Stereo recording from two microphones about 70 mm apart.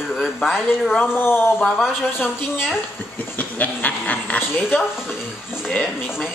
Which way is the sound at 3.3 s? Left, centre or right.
Left.